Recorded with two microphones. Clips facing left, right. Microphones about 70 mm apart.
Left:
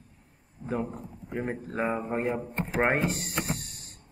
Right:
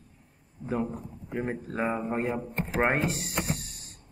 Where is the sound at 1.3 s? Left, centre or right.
Centre.